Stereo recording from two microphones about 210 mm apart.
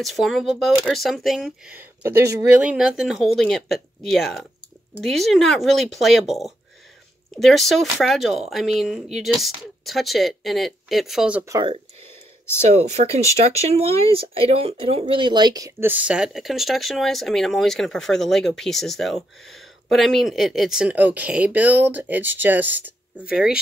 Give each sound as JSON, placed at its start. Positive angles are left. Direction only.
{"t": 0.0, "sound": "speech", "side_deg": 0}
{"t": 12.6, "sound": "speech", "side_deg": -30}